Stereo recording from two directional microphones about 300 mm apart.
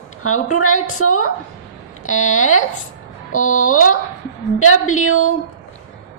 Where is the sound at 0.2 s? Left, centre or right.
Left.